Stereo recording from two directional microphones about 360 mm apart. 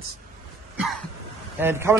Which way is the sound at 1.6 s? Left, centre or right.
Centre.